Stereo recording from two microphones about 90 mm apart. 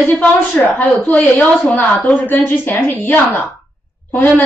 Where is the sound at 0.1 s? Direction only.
15° left (ahead or behind).